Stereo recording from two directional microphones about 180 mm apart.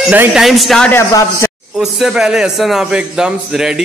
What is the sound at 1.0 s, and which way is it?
Speech, 15° left (ahead or behind).